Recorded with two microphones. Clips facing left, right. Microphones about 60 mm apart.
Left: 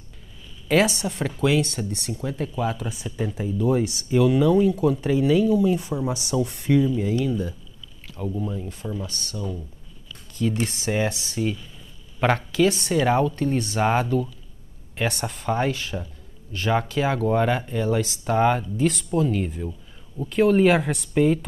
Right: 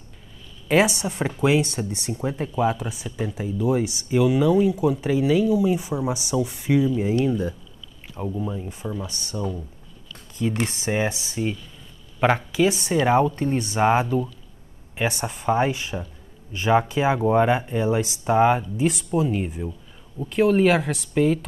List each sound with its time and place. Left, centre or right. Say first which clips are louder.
0.7 s speech: right 1 dB; centre
7.2 s speech: right 2 dB; right
8.3 s speech: even; centre
10.7 s speech: even; centre
20.2 s speech: even; centre